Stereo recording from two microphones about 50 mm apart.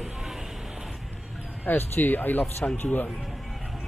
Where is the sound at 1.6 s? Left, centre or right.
Left.